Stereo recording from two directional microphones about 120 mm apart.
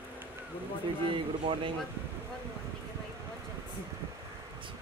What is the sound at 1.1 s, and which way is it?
Speech, 45° right (ahead or behind).